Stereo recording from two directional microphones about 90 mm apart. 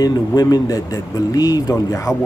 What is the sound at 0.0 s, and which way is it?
Speech, 45° left (ahead or behind).